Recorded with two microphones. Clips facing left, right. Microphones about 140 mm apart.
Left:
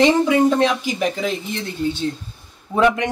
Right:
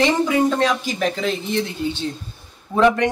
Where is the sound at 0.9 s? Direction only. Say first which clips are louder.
Even; 5° left (ahead or behind).